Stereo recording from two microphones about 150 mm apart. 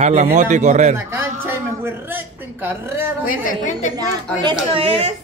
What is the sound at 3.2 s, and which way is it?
Speech, 60° left (ahead or behind).